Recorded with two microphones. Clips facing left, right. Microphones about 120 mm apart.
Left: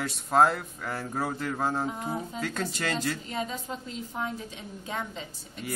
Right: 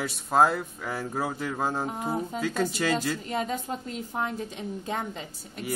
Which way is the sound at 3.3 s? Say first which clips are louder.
Right 4 dB; 50° right (ahead or behind).